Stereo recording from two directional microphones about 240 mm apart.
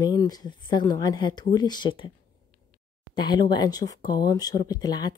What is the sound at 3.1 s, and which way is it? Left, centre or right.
Speech, centre.